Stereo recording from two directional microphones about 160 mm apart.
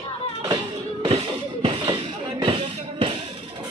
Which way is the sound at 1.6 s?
35° right (ahead or behind).